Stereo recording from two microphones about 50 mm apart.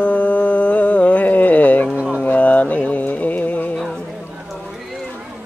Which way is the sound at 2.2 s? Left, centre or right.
Left.